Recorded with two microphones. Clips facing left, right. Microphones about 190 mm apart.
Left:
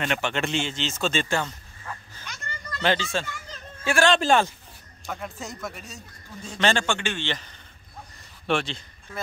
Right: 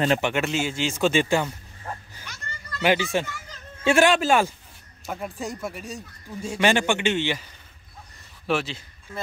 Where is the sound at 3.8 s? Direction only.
25° right (ahead or behind).